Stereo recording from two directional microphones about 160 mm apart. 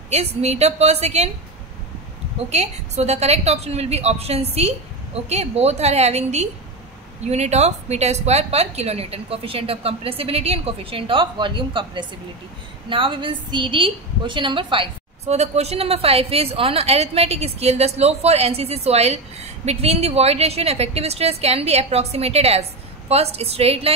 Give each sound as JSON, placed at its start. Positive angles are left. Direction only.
{"t": 0.1, "sound": "a woman's voice", "side_deg": -40}
{"t": 2.5, "sound": "a woman's voice", "side_deg": -45}